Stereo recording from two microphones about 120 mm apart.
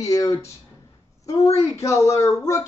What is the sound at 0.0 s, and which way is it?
Speech, 25° left (ahead or behind).